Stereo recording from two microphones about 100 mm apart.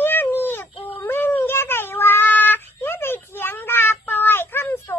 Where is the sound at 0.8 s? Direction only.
20° left (ahead or behind).